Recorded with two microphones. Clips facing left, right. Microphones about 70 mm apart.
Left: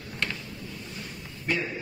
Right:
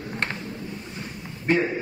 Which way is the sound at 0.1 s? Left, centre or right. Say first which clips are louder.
Right 3 dB; right.